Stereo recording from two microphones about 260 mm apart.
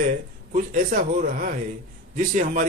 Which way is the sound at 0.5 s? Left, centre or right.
Right.